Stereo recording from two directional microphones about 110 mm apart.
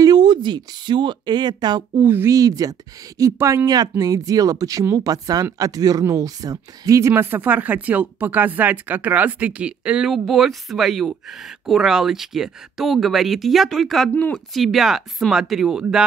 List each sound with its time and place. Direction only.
0.0 s speech: 40° right (ahead or behind)
2.0 s speech: 20° right (ahead or behind)
2.3 s speech: 35° right (ahead or behind); by 15.8 s 5° right (ahead or behind)